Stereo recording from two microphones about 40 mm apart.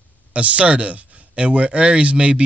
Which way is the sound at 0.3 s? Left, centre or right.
Right.